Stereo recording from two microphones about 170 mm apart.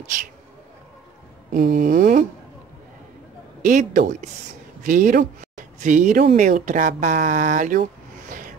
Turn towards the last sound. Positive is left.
turn(degrees=-50)  # may be behind; listen again after turning